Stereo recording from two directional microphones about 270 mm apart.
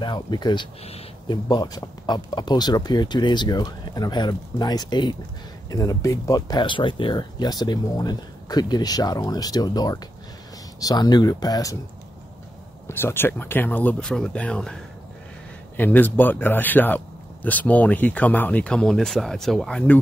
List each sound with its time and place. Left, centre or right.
0.0 s speech: centre
12.8 s speech: centre